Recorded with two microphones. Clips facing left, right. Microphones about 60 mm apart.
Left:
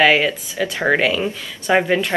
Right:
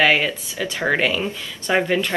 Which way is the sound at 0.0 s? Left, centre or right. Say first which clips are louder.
Left 3 dB; centre.